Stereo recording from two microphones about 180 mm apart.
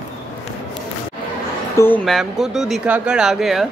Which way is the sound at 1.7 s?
10° left (ahead or behind).